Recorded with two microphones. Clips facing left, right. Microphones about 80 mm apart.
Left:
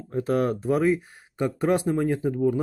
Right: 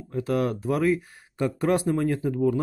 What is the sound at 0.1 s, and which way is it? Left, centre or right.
Speech, left.